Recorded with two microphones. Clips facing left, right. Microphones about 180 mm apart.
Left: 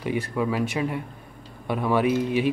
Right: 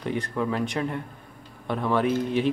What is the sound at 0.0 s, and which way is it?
A man's voice, 5° left (ahead or behind).